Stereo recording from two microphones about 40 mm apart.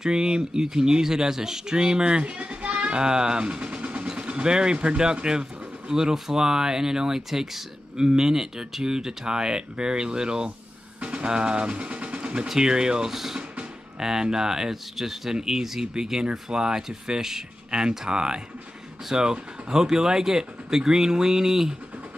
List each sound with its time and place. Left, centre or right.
0.0 s speech: centre
11.0 s speech: right
12.4 s speech: centre
13.1 s speech: centre
13.4 s music: right
14.0 s speech: centre